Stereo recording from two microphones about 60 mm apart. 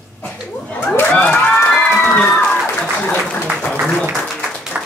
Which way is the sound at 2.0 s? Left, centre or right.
Left.